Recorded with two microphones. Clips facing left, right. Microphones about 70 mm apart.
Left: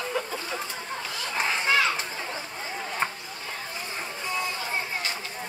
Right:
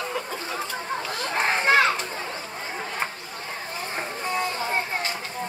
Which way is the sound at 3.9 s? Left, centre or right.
Right.